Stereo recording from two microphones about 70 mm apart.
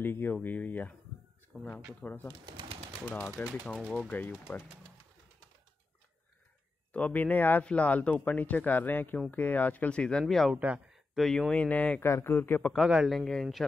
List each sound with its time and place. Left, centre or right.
0.0 s speech: left
3.4 s speech: left
6.9 s speech: left
10.2 s speech: centre
10.5 s a man's voice: centre
10.9 s a sound: centre
11.5 s speech: centre
12.0 s speech: left
12.7 s a man's voice: centre
13.1 s speech: centre